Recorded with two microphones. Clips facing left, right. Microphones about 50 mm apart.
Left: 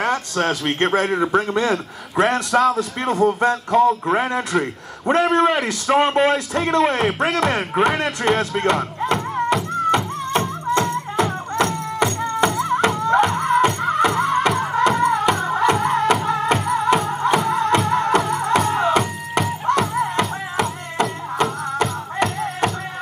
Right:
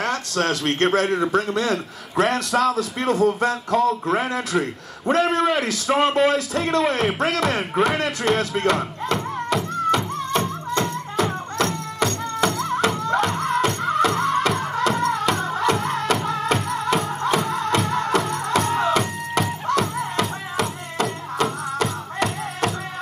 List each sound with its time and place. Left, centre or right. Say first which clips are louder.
0.0 s a man's voice: left 2 dB; centre
10.7 s music: left 6 dB; left
11.5 s music: left 3 dB; centre